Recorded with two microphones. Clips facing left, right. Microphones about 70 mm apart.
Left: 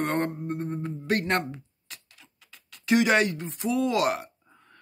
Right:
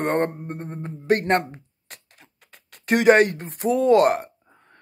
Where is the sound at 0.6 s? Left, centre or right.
Right.